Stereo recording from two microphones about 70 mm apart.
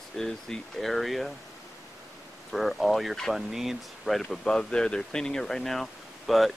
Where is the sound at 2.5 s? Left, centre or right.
Centre.